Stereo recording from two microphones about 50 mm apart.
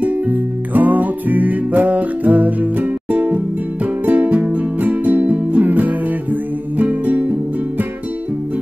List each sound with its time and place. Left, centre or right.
0.0 s music: right